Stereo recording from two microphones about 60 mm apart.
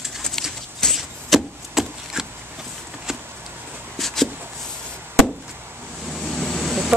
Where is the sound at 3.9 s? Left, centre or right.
Centre.